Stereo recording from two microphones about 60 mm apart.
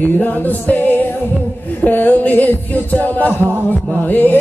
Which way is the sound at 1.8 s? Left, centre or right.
Left.